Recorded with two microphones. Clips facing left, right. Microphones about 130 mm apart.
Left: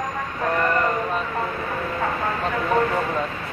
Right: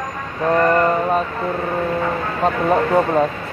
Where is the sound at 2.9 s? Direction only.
50° right (ahead or behind).